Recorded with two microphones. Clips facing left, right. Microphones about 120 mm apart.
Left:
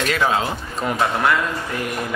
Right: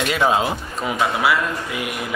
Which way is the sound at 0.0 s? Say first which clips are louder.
Right 1 dB; 15° right (ahead or behind).